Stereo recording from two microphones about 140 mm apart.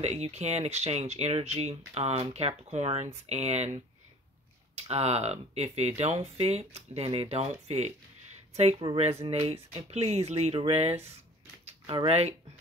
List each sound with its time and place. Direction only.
0.0 s speech: 50° right (ahead or behind)
4.7 s speech: 50° right (ahead or behind)